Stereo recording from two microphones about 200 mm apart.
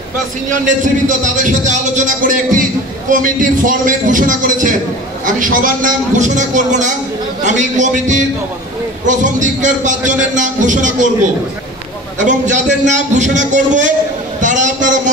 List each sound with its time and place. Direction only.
0.5 s speech: 40° right (ahead or behind)
12.2 s a man's voice: 35° right (ahead or behind)